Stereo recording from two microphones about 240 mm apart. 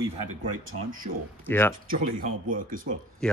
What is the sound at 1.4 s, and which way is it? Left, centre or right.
Speech, centre.